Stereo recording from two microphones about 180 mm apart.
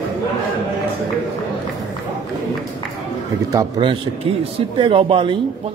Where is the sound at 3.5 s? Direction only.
30° right (ahead or behind).